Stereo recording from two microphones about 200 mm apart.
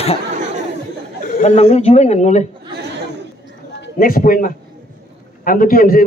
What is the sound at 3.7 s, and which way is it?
A man's voice, 45° left (ahead or behind).